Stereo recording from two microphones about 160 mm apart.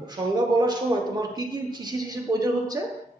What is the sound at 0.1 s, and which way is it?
A man's voice, 25° right (ahead or behind).